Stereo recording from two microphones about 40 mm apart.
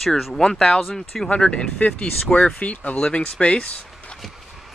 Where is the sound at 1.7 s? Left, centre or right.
Left.